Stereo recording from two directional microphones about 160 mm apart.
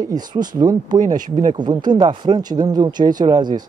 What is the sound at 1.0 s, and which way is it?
Speech, 55° right (ahead or behind).